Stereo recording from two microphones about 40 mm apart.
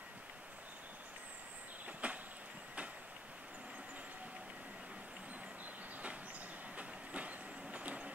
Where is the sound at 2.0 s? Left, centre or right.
Right.